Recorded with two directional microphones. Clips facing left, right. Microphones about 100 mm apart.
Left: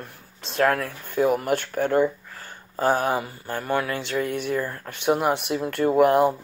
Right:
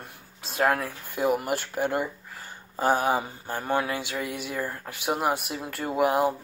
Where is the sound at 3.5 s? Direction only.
15° right (ahead or behind).